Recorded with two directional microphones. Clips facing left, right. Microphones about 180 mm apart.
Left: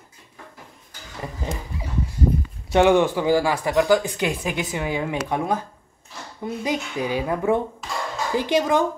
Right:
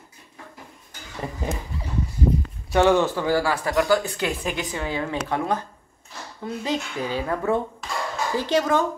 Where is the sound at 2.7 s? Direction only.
15° left (ahead or behind).